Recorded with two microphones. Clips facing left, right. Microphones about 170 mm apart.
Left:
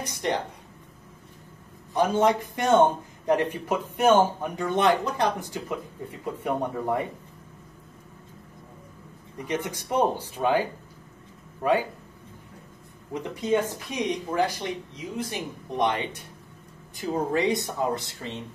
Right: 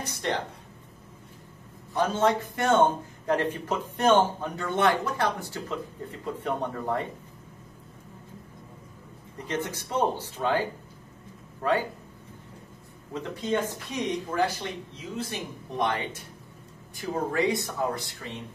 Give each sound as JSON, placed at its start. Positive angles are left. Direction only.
{"t": 0.0, "sound": "a woman's voice", "side_deg": 15}
{"t": 2.0, "sound": "speech", "side_deg": 15}
{"t": 9.5, "sound": "speech", "side_deg": 10}
{"t": 13.1, "sound": "speech", "side_deg": 15}